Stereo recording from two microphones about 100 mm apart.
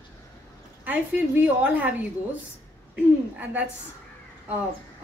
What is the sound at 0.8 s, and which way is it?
A woman's voice, 15° right (ahead or behind).